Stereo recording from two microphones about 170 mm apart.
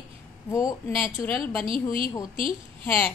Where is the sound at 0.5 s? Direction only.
20° left (ahead or behind).